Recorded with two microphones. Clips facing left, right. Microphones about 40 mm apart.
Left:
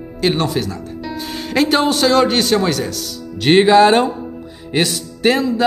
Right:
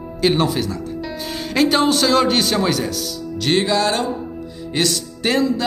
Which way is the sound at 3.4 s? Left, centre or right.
Left.